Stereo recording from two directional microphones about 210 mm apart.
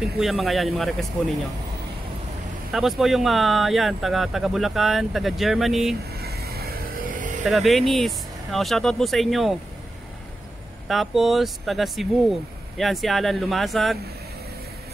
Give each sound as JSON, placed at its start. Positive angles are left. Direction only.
{"t": 0.0, "sound": "speech", "side_deg": 0}
{"t": 2.7, "sound": "speech", "side_deg": 0}
{"t": 6.2, "sound": "vehicle", "side_deg": -50}
{"t": 7.4, "sound": "speech", "side_deg": 0}
{"t": 10.9, "sound": "speech", "side_deg": 0}